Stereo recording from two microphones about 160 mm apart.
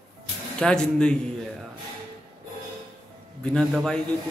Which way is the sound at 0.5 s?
5° left (ahead or behind).